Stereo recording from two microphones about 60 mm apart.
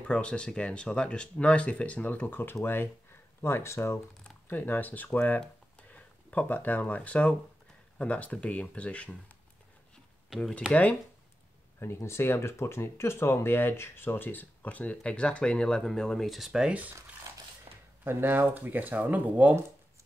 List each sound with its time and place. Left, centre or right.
0.1 s speech: centre; by 4.0 s left
4.5 s speech: left
10.7 s speech: left
11.8 s speech: left; by 16.7 s centre
17.3 s a sound: right
18.0 s speech: right